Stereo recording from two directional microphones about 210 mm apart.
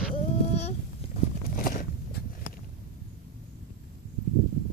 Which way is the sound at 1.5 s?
40° left (ahead or behind).